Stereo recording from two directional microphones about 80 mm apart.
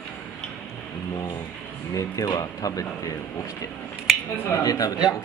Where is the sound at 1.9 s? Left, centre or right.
Left.